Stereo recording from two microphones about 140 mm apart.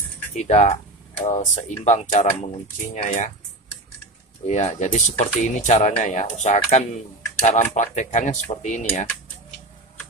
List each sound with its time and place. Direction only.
0.4 s speech: 55° left (ahead or behind)
4.5 s speech: 55° left (ahead or behind)